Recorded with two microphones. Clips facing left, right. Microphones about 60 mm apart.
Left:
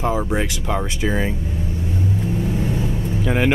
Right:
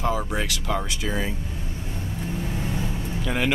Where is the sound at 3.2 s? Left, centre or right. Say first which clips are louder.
Left 6 dB; left.